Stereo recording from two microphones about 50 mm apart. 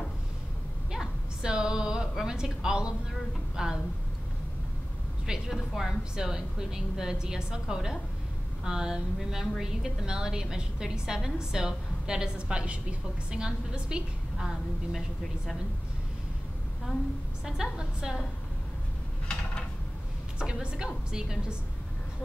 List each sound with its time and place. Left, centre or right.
0.9 s a sound: centre
2.1 s a woman's voice: centre
5.2 s a woman's voice: centre
17.5 s a woman's voice: centre
20.3 s a woman's voice: centre